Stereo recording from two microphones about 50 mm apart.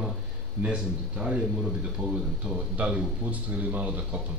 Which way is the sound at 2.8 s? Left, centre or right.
Right.